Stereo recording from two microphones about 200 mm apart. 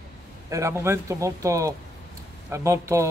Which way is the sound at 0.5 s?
15° right (ahead or behind).